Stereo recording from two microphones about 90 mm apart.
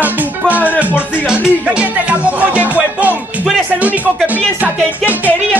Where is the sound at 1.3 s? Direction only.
10° right (ahead or behind).